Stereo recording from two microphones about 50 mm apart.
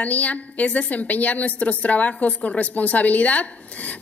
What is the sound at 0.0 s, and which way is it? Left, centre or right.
A woman's voice, left.